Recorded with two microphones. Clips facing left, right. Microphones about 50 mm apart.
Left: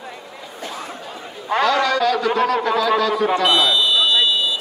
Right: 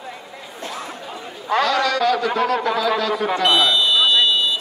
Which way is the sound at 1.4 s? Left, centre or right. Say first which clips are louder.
Left 1 dB; left.